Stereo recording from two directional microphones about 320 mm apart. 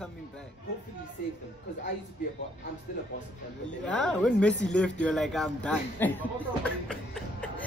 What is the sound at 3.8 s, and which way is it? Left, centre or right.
Speech, centre.